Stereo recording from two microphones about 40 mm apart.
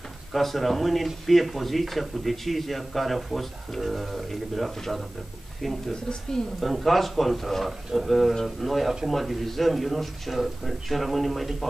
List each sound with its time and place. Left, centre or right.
0.3 s speech: centre